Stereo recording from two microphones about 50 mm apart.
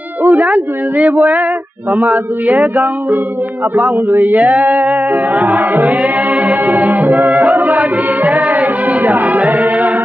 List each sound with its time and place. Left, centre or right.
0.2 s male singing: right
6.4 s music: right